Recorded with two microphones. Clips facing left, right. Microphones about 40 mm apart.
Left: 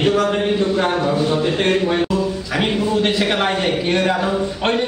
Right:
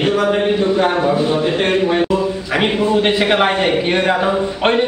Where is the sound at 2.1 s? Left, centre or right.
Right.